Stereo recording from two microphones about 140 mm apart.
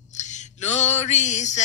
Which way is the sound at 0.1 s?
60° left (ahead or behind).